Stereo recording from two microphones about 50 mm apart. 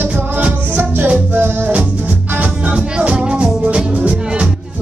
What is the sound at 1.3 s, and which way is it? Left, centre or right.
Music, right.